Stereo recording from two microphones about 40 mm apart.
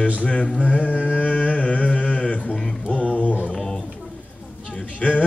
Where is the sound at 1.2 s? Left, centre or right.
Left.